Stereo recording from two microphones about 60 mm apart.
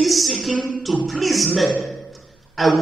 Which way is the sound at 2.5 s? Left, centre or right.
Centre.